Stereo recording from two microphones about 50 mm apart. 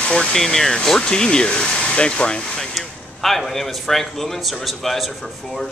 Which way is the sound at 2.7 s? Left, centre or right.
Centre.